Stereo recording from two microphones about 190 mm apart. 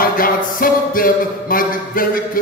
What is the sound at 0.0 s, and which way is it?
Music, 50° left (ahead or behind).